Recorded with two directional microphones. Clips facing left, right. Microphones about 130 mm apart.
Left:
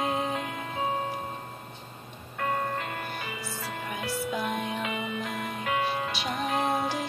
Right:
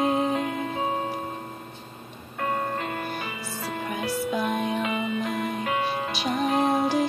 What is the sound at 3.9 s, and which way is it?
Music, 25° right (ahead or behind).